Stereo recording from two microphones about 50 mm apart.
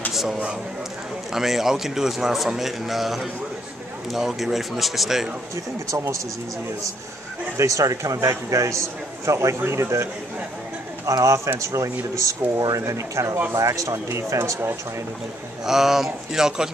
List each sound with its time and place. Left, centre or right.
0.1 s a sound: centre
1.3 s a man's voice: centre
5.9 s speech: right
7.5 s speech: right
9.7 s a man's voice: right
11.1 s speech: right
14.0 s speech: right
15.6 s a man's voice: centre